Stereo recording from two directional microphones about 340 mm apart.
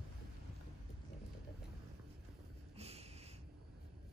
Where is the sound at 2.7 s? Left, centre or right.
Centre.